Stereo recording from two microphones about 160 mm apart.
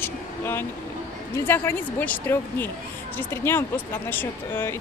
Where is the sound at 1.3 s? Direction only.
15° left (ahead or behind).